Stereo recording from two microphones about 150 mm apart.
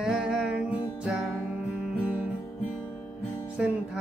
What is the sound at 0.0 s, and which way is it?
Music, 5° right (ahead or behind).